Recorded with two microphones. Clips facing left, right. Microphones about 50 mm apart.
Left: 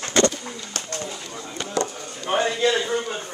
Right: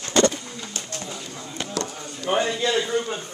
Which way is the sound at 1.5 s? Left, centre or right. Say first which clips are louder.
Left 4 dB; centre.